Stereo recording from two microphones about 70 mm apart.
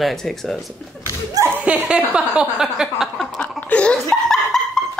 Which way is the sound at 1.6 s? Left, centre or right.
Centre.